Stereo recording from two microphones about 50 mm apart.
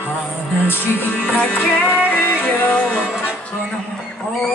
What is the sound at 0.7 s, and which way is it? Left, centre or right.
Music, left.